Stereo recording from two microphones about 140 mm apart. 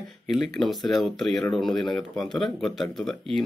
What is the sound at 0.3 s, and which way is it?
Speech, centre (ahead or behind).